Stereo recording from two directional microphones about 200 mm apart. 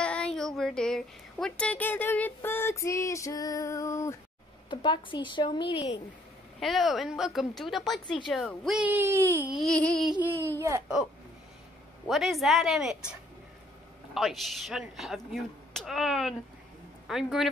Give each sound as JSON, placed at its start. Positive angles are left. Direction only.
{"t": 0.0, "sound": "speech", "side_deg": 5}
{"t": 6.6, "sound": "speech", "side_deg": 0}
{"t": 12.1, "sound": "speech", "side_deg": 0}
{"t": 14.1, "sound": "speech", "side_deg": 0}